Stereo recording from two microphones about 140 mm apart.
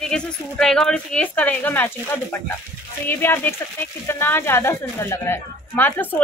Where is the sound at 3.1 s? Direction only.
15° left (ahead or behind).